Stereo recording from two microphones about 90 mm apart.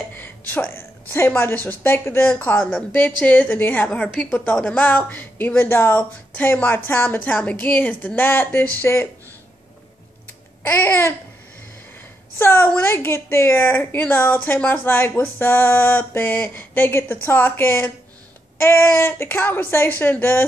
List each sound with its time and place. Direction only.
0.5 s a woman's voice: 20° left (ahead or behind)
10.6 s a woman's voice: 25° left (ahead or behind)
12.4 s a woman's voice: 25° left (ahead or behind)